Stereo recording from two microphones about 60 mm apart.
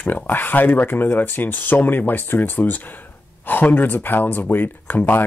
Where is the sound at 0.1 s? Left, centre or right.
Left.